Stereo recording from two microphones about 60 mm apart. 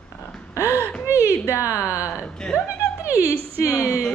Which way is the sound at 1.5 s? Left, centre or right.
Left.